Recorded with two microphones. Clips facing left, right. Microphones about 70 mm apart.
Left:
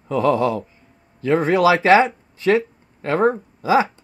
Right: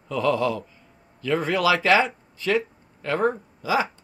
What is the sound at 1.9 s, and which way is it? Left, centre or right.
Speech, left.